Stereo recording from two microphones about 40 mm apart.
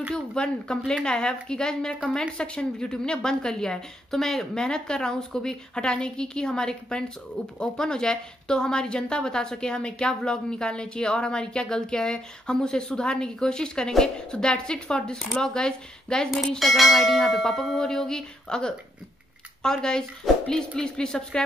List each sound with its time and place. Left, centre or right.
0.1 s church bell: centre
4.1 s church bell: centre
4.6 s speech: centre
16.3 s church bell: centre